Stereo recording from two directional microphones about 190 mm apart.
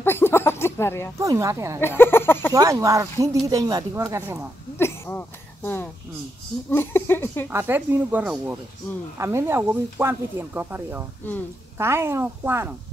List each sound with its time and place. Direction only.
0.0 s a sound: 10° left (ahead or behind)
1.1 s speech: 15° right (ahead or behind)
1.8 s speech: 10° left (ahead or behind)
2.5 s speech: 15° right (ahead or behind)
4.7 s a sound: 15° left (ahead or behind)
6.7 s speech: 10° left (ahead or behind)
7.4 s speech: 10° right (ahead or behind)